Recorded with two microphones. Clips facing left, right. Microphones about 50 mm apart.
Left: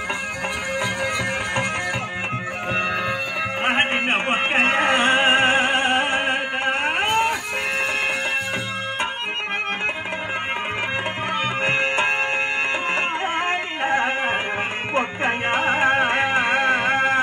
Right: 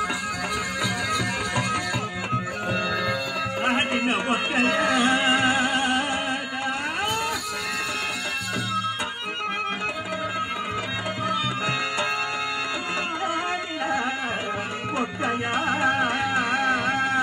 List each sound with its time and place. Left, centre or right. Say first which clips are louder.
3.6 s music: left 3 dB; left
11.6 s music: left 5 dB; left
13.8 s a sound: left 5 dB; left
15.0 s music: left 4 dB; left